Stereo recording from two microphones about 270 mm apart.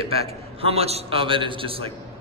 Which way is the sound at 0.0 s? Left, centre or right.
Right.